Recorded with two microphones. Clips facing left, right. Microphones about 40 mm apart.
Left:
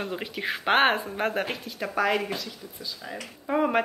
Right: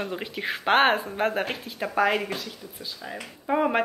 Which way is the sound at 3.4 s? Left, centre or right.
Centre.